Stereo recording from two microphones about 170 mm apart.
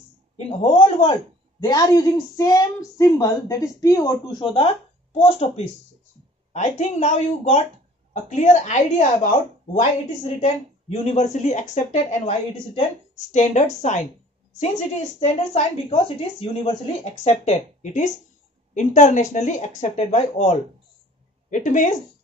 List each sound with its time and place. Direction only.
0.7 s a woman's voice: 35° left (ahead or behind)
1.6 s a woman's voice: 25° left (ahead or behind); by 21.9 s 50° left (ahead or behind)